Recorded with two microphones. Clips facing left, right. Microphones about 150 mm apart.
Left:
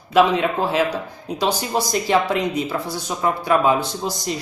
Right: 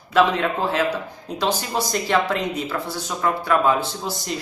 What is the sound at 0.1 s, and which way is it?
Speech, 15° left (ahead or behind).